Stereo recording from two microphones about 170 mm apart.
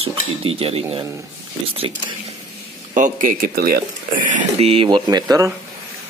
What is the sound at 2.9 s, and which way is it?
Speech, 50° right (ahead or behind).